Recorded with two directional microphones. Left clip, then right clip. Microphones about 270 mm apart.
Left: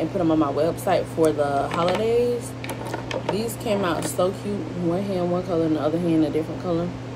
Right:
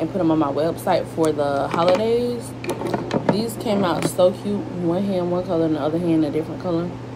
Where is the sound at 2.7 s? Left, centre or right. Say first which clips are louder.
Right 7 dB; right.